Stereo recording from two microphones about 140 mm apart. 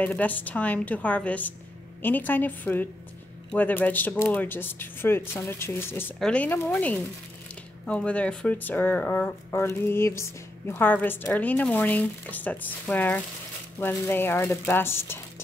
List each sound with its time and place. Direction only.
0.0 s speech: 10° left (ahead or behind)